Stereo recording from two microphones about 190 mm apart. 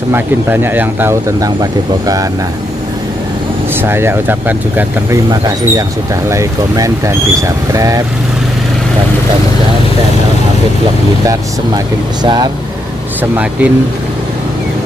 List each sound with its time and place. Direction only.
0.1 s speech: 10° right (ahead or behind)
3.8 s speech: 10° right (ahead or behind)
11.2 s speech: 20° right (ahead or behind)
13.2 s speech: 5° right (ahead or behind)